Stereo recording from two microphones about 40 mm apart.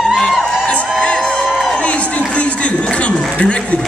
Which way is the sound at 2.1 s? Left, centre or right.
Left.